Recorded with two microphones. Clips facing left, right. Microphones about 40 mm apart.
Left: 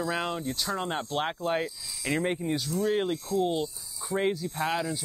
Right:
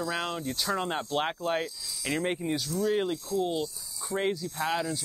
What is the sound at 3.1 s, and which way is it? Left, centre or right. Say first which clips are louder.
Speech: left 2 dB; left.